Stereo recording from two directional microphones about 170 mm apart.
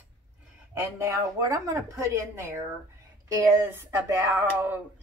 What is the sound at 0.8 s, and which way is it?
A woman's voice, 15° right (ahead or behind).